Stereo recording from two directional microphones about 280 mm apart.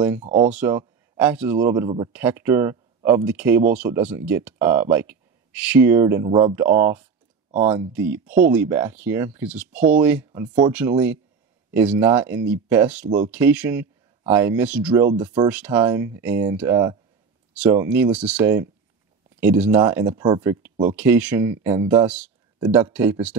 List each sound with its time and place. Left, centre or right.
0.2 s speech: centre
0.5 s speech: centre
8.5 s speech: centre